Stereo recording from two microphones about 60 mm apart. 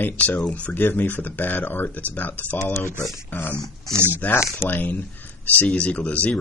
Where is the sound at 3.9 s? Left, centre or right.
Right.